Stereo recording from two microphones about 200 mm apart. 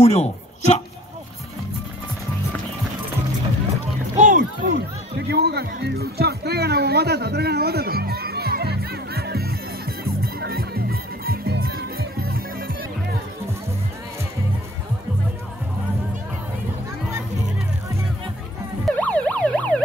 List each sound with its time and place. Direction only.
0.0 s a sound: 35° left (ahead or behind)
4.2 s music: 40° right (ahead or behind)
5.3 s music: 55° right (ahead or behind)
18.9 s emergency vehicle: 5° left (ahead or behind)